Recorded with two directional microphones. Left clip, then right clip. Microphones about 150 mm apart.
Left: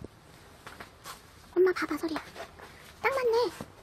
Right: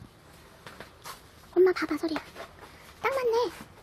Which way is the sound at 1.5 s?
10° right (ahead or behind).